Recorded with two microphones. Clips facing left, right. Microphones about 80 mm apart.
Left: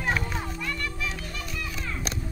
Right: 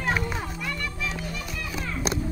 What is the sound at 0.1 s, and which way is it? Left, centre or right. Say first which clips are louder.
Music: right 1 dB; centre.